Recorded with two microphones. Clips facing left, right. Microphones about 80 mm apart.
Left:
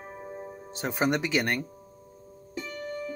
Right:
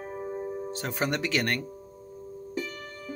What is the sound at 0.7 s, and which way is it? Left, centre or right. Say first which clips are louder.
Speech: left 5 dB; centre.